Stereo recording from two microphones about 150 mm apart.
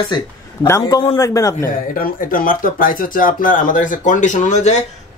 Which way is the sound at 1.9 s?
65° left (ahead or behind).